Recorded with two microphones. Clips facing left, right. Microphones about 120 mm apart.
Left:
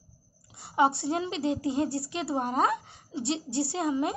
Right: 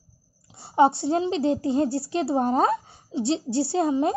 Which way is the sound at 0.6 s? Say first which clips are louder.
Right 6 dB; 30° right (ahead or behind).